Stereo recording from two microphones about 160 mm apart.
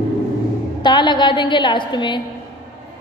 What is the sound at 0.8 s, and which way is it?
A woman's voice, 25° left (ahead or behind).